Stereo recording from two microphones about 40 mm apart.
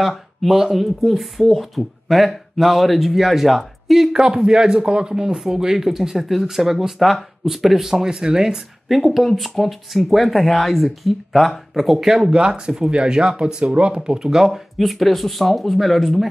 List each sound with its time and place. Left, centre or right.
0.1 s speech: centre
4.1 s speech: centre
8.8 s speech: centre
12.3 s speech: right; by 16.3 s centre